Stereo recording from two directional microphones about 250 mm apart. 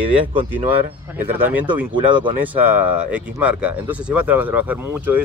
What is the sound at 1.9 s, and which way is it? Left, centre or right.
Speech, centre.